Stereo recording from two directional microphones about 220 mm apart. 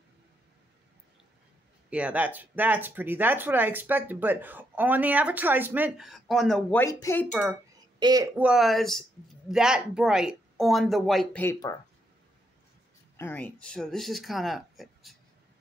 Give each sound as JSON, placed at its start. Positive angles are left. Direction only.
{"t": 1.9, "sound": "speech", "side_deg": -5}
{"t": 8.0, "sound": "speech", "side_deg": -15}
{"t": 8.4, "sound": "speech", "side_deg": -5}
{"t": 13.2, "sound": "speech", "side_deg": 10}